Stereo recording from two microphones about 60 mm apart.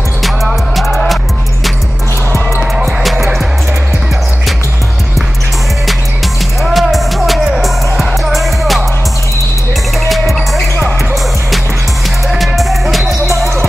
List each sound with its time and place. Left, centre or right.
0.2 s music: centre
2.8 s music: centre
6.6 s music: centre
10.0 s music: centre
12.3 s music: centre
13.3 s music: right